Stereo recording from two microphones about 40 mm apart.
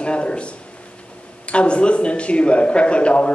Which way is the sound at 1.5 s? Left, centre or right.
Left.